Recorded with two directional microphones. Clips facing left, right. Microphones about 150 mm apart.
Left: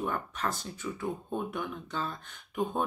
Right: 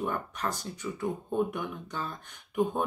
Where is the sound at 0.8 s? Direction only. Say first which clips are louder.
Right 1 dB; centre (ahead or behind).